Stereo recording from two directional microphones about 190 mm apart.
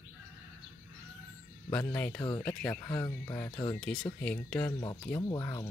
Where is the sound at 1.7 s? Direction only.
10° left (ahead or behind).